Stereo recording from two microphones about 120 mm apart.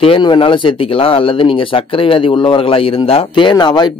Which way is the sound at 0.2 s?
40° left (ahead or behind).